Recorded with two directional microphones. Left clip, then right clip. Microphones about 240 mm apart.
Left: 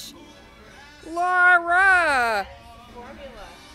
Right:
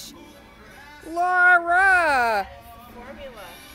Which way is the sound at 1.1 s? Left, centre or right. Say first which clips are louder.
Even; centre.